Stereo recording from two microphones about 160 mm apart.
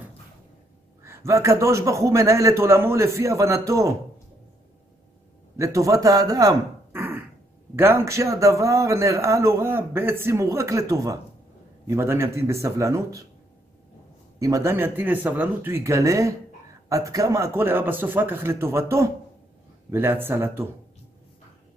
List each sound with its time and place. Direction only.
1.0 s a man's voice: 15° right (ahead or behind)
5.6 s a man's voice: 20° right (ahead or behind)
7.0 s a sound: 10° right (ahead or behind)
7.7 s a man's voice: 15° right (ahead or behind)
14.4 s a man's voice: 20° right (ahead or behind)